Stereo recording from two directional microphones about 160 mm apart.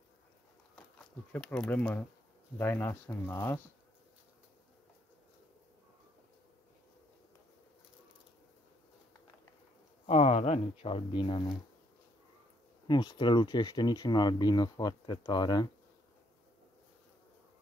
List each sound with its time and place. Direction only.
0.9 s speech: 5° left (ahead or behind)
10.0 s speech: 40° left (ahead or behind)
12.8 s speech: 30° left (ahead or behind)